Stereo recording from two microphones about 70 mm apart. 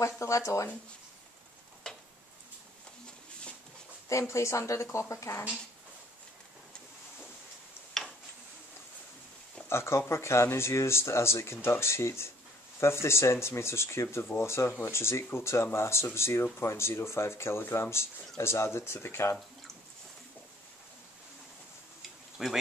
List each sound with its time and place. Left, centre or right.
0.0 s a woman's voice: left
1.8 s a sound: centre
4.1 s a woman's voice: left
9.7 s speech: left
22.4 s speech: centre